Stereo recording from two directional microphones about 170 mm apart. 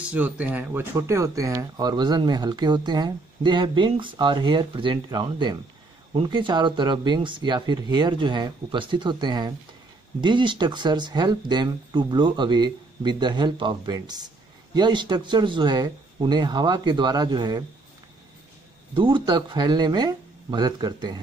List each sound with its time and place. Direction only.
0.0 s speech: 10° right (ahead or behind); by 17.6 s 25° right (ahead or behind)
18.9 s speech: 30° right (ahead or behind)